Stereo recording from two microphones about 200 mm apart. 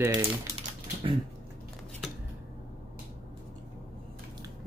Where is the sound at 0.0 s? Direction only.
10° right (ahead or behind).